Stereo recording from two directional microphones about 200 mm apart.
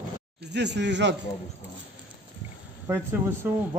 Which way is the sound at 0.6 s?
60° right (ahead or behind).